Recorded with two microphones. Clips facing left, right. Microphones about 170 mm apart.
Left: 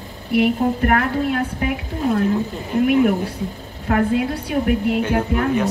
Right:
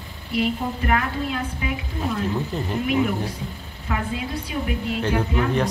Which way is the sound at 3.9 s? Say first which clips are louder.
Left 9 dB; 55° left (ahead or behind).